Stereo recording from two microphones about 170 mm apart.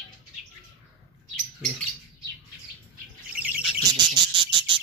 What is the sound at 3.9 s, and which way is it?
Cricket, 25° right (ahead or behind).